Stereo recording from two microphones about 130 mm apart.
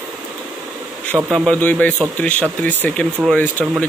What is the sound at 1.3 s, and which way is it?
A man's voice, 10° left (ahead or behind).